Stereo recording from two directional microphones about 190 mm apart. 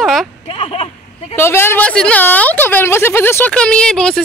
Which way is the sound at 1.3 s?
10° left (ahead or behind).